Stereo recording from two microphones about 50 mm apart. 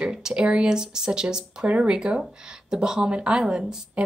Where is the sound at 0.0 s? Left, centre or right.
Centre.